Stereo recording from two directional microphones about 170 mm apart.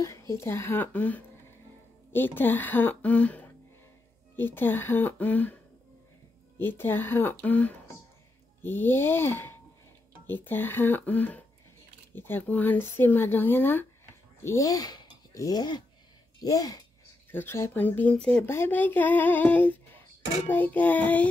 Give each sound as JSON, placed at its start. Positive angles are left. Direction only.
{"t": 0.3, "sound": "speech", "side_deg": 15}
{"t": 6.6, "sound": "speech", "side_deg": 10}